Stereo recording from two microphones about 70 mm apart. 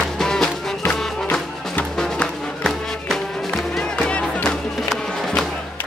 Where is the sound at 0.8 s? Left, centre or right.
Left.